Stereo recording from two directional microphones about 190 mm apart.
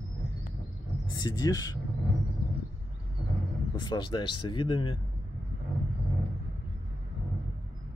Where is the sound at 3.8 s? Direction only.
25° left (ahead or behind).